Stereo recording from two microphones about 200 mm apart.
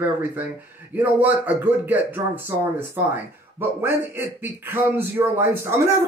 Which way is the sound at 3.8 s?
10° right (ahead or behind).